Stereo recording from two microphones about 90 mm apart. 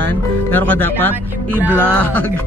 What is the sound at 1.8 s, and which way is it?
Speech, 15° left (ahead or behind).